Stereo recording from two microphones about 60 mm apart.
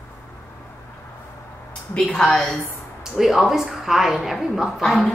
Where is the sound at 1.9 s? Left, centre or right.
Centre.